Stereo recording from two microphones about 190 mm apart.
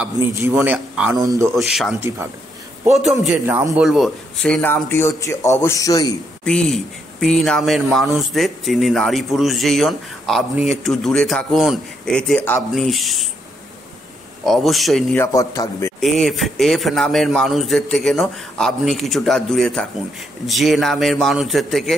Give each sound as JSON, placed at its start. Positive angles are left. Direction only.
{"t": 0.4, "sound": "a man's voice", "side_deg": -15}
{"t": 1.5, "sound": "speech", "side_deg": 0}
{"t": 2.0, "sound": "a man's voice", "side_deg": -15}
{"t": 3.0, "sound": "speech", "side_deg": 0}
{"t": 3.5, "sound": "a man's voice", "side_deg": -15}
{"t": 3.8, "sound": "speech", "side_deg": 0}
{"t": 6.4, "sound": "speech", "side_deg": 5}
{"t": 14.4, "sound": "speech", "side_deg": 0}
{"t": 15.1, "sound": "speech", "side_deg": 15}
{"t": 16.0, "sound": "speech", "side_deg": 0}